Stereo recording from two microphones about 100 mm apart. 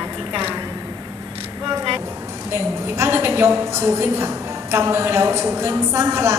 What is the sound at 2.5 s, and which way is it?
A woman's voice, 25° right (ahead or behind).